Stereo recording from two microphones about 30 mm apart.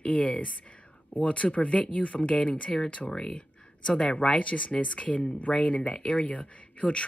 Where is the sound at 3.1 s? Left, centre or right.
Left.